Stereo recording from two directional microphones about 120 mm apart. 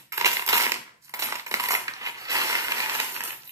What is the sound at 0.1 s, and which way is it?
Crushing, 25° right (ahead or behind).